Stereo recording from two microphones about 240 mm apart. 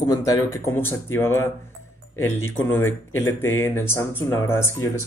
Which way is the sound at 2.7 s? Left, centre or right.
Centre.